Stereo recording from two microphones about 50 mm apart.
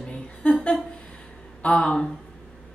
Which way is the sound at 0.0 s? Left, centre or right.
Centre.